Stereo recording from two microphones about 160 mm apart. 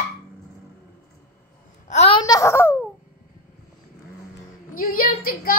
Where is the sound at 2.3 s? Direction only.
20° left (ahead or behind).